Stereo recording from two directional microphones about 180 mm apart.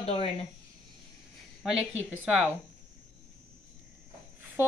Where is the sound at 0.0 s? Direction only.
35° left (ahead or behind).